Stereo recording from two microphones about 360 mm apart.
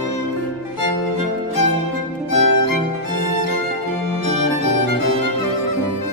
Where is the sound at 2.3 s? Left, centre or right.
Left.